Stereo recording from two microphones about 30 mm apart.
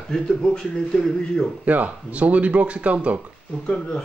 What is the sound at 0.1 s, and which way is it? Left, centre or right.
Speech, left.